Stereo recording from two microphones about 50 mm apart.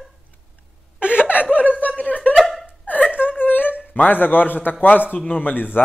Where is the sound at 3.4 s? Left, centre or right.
Left.